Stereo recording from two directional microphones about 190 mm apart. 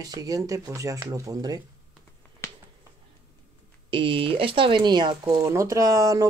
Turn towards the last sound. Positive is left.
turn(degrees=-20)  # may be behind; listen again after turning